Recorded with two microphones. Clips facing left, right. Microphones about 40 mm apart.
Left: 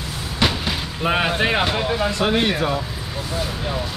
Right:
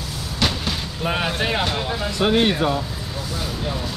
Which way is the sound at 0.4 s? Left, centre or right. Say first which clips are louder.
Left 2 dB; centre.